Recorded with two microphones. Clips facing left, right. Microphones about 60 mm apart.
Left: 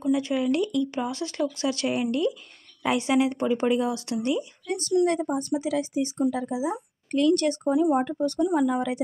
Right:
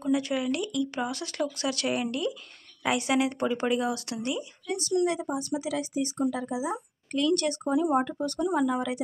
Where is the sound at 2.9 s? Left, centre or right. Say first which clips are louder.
Left 4 dB; left.